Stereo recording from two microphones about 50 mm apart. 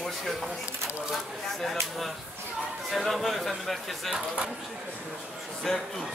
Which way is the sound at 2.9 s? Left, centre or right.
Centre.